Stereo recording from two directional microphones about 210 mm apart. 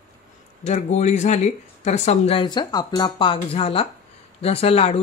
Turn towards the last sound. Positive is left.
turn(degrees=30)  # may be behind; listen again after turning